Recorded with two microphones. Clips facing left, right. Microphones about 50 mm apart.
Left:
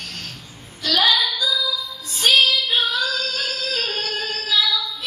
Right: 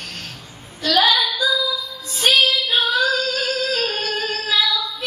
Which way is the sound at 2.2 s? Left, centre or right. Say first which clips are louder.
Even; right.